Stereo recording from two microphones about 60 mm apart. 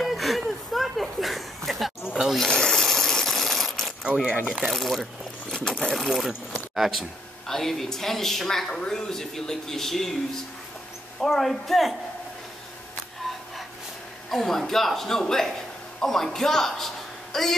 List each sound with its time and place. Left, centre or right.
0.0 s a sound: centre
2.0 s snake: centre
2.3 s a sound: centre
4.0 s speech: centre
4.6 s speech: centre
11.1 s speech: centre
14.3 s a woman's voice: centre